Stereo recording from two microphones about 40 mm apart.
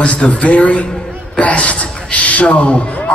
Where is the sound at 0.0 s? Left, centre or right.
Left.